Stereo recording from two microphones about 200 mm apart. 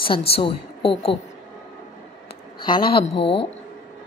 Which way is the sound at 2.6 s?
25° left (ahead or behind).